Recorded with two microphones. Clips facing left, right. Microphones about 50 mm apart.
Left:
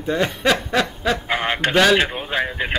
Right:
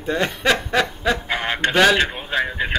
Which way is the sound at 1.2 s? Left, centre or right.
Centre.